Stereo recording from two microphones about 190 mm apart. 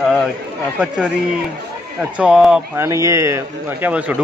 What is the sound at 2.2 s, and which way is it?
Speech, 5° right (ahead or behind).